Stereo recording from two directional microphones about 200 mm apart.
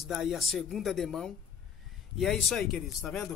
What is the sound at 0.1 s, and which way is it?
A man's voice, centre (ahead or behind).